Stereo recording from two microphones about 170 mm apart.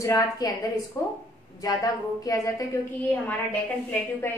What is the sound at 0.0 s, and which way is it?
Speech, 20° left (ahead or behind).